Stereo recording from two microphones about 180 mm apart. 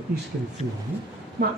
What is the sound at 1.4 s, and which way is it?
Speech, 60° right (ahead or behind).